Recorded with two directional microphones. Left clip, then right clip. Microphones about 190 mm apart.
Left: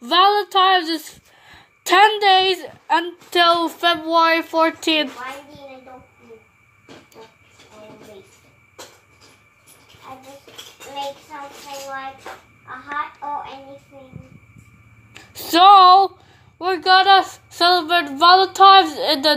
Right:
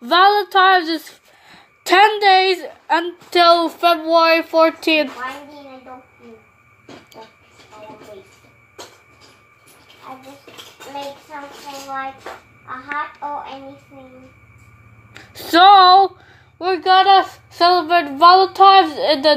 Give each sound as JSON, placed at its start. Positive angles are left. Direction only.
{"t": 0.0, "sound": "speech", "side_deg": -5}
{"t": 15.1, "sound": "speech", "side_deg": -5}